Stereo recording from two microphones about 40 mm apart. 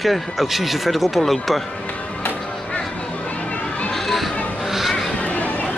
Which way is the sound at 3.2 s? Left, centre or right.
Left.